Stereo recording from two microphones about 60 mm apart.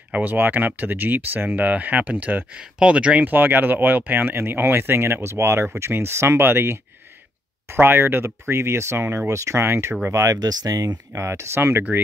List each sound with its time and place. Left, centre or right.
0.1 s speech: right
2.6 s speech: centre
3.3 s speech: right
9.3 s speech: right
10.1 s speech: right
11.2 s speech: right